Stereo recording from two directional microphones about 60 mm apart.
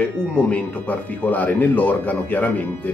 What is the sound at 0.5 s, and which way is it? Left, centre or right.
Speech, left.